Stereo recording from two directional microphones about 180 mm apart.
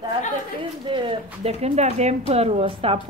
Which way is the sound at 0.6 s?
30° right (ahead or behind).